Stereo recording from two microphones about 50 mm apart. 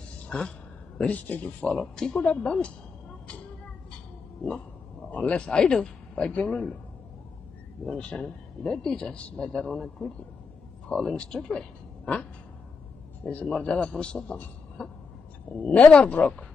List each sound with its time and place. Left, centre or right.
1.0 s speech: left
1.8 s speech: centre
2.1 s speech: left
2.4 s a sound: centre
5.1 s speech: left
7.8 s speech: centre
13.2 s speech: left